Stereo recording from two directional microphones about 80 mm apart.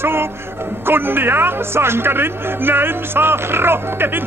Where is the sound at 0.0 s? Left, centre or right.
Right.